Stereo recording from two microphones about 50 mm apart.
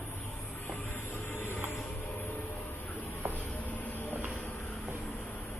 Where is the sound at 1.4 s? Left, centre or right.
Left.